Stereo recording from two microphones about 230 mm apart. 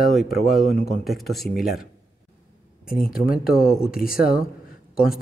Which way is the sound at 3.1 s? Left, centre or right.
Left.